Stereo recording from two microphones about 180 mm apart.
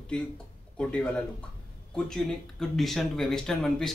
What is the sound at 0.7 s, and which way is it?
Speech, 5° left (ahead or behind).